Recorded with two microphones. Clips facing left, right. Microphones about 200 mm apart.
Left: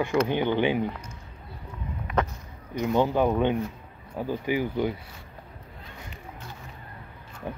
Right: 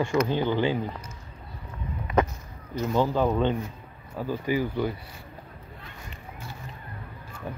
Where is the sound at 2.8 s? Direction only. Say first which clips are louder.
Left 1 dB; 15° left (ahead or behind).